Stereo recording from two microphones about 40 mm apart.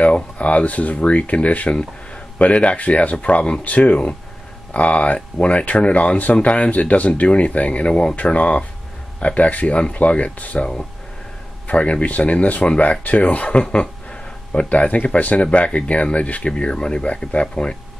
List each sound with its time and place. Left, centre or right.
0.0 s speech: left
16.5 s speech: left